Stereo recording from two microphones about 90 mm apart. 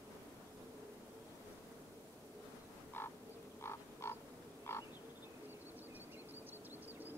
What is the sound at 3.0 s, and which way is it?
Frog, 25° left (ahead or behind).